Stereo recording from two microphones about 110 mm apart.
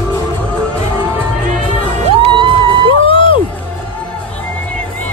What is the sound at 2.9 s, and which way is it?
Music, 55° left (ahead or behind).